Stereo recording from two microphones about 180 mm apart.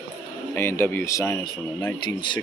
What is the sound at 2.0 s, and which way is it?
Speech, 25° left (ahead or behind).